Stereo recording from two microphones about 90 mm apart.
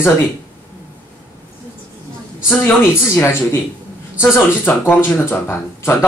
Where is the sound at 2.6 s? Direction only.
25° left (ahead or behind).